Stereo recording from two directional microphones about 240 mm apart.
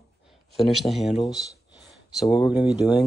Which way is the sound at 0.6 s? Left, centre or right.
Centre.